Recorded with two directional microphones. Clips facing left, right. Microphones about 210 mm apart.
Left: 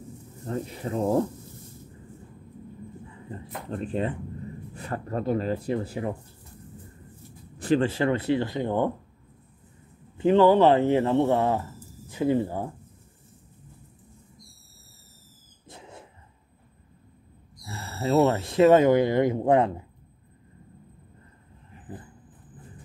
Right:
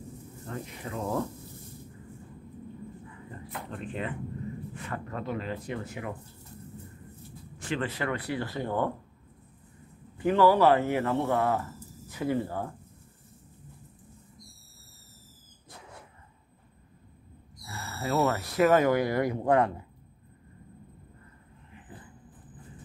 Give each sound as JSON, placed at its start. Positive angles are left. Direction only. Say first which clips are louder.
{"t": 0.5, "sound": "speech", "louder": "left 7 dB", "side_deg": 35}
{"t": 3.1, "sound": "a sound", "louder": "left 3 dB", "side_deg": 25}
{"t": 3.8, "sound": "speech", "louder": "left 7 dB", "side_deg": 35}
{"t": 7.5, "sound": "speech", "louder": "left 9 dB", "side_deg": 35}
{"t": 10.1, "sound": "speech", "louder": "left 4 dB", "side_deg": 20}
{"t": 15.7, "sound": "a sound", "louder": "left 4 dB", "side_deg": 25}
{"t": 17.6, "sound": "speech", "louder": "left 5 dB", "side_deg": 25}